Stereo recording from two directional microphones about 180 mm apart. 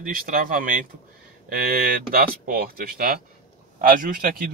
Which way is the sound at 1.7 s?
55° right (ahead or behind).